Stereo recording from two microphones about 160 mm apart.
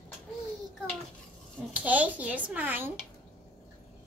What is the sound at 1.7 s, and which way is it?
Speech, 10° right (ahead or behind).